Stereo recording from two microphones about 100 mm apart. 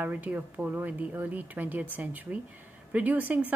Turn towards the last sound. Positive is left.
turn(degrees=-15)  # may be behind; listen again after turning